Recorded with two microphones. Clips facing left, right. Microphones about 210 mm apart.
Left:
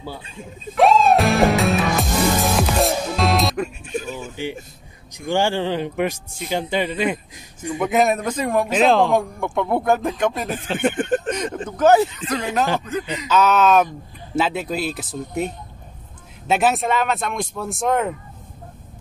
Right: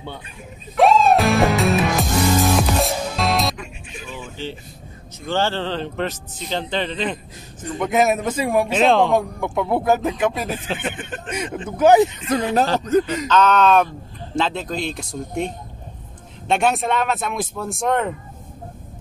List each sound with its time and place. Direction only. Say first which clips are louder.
0.7 s music: even; centre (ahead or behind)
3.5 s speech: left 11 dB; 45° left (ahead or behind)
5.2 s speech: left 2 dB; 15° left (ahead or behind)
7.9 s speech: right 1 dB; centre (ahead or behind)
11.0 s speech: left 12 dB; 50° left (ahead or behind)
11.2 s speech: left 2 dB; 10° right (ahead or behind)
12.8 s speech: right 8 dB; 45° right (ahead or behind)
13.3 s speech: even; 5° left (ahead or behind)